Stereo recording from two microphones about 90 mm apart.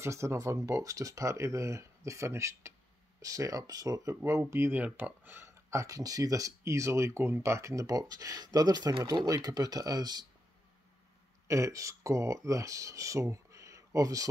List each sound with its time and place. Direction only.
0.0 s speech: 30° right (ahead or behind)
4.2 s speech: 30° right (ahead or behind)
4.8 s speech: 20° right (ahead or behind); by 10.2 s 50° right (ahead or behind)
11.4 s speech: 35° right (ahead or behind)